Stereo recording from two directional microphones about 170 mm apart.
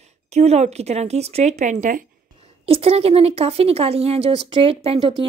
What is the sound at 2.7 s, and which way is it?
A woman's voice, 35° right (ahead or behind).